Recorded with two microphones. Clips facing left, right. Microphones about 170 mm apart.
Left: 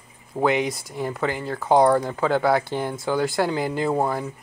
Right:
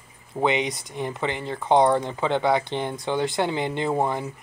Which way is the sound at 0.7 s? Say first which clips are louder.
Left 2 dB; centre (ahead or behind).